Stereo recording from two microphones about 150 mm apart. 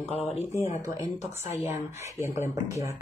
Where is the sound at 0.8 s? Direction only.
20° right (ahead or behind).